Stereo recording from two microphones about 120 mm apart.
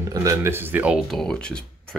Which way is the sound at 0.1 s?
30° right (ahead or behind).